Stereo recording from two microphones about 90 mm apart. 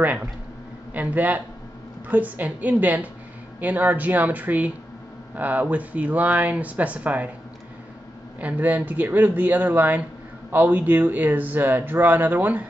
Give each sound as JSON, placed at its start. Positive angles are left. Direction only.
{"t": 0.0, "sound": "speech", "side_deg": -20}
{"t": 8.4, "sound": "speech", "side_deg": -15}